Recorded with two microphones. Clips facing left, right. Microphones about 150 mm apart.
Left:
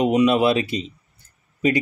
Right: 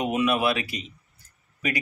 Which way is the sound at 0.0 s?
25° left (ahead or behind).